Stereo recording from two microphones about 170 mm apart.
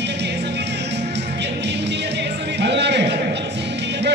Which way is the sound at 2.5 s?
85° right.